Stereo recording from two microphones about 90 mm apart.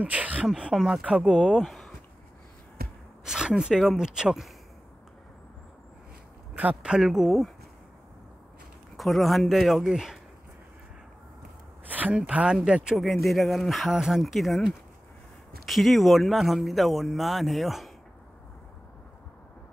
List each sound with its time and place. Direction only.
0.0 s speech: 15° right (ahead or behind); by 1.9 s centre (ahead or behind)
3.3 s speech: 5° right (ahead or behind)
6.5 s speech: 15° right (ahead or behind); by 7.5 s centre (ahead or behind)
8.9 s speech: centre (ahead or behind)
11.9 s speech: 15° right (ahead or behind); by 17.9 s centre (ahead or behind)